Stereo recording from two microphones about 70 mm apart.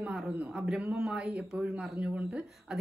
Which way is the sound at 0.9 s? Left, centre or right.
Centre.